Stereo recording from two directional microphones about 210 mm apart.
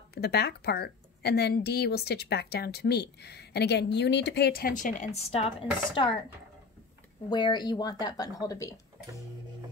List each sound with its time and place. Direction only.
0.1 s a woman's voice: 50° left (ahead or behind); by 6.0 s 25° left (ahead or behind)
7.2 s speech: 20° left (ahead or behind)